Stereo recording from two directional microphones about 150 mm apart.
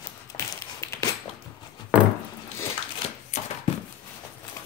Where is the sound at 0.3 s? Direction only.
20° left (ahead or behind).